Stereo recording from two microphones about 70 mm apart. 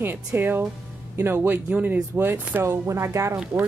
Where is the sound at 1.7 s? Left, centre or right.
Right.